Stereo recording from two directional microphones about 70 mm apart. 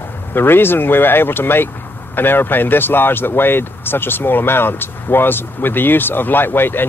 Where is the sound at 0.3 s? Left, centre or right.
Left.